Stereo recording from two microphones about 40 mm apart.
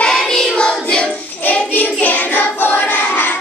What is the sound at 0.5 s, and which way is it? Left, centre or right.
Music, left.